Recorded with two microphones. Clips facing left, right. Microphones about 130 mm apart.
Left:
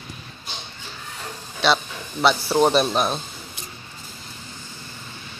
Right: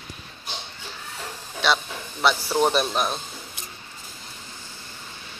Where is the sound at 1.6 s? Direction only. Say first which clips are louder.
Left 3 dB; 25° left (ahead or behind).